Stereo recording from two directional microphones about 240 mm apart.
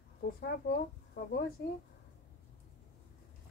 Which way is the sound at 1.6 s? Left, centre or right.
Left.